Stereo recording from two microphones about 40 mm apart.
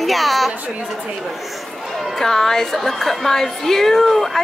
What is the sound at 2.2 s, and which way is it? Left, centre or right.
A woman's voice, centre.